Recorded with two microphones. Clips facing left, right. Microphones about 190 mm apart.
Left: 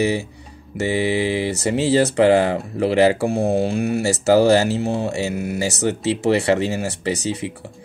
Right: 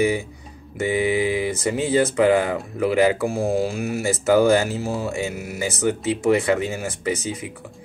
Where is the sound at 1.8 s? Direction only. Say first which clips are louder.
Left 3 dB; 75° left (ahead or behind).